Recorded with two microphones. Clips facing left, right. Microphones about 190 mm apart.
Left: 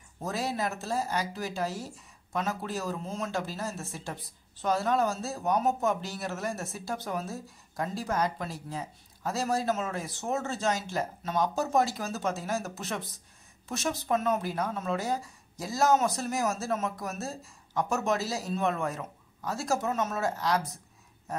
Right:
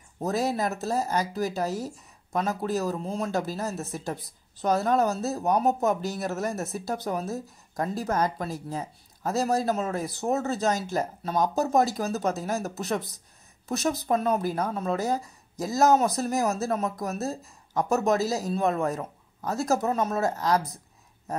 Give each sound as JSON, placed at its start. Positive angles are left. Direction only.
{"t": 0.2, "sound": "a man's voice", "side_deg": -40}